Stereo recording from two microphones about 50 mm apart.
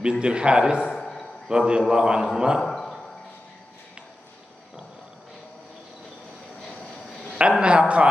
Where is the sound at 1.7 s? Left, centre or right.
Centre.